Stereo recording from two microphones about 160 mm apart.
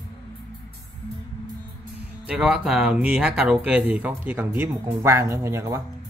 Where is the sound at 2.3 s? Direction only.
5° right (ahead or behind).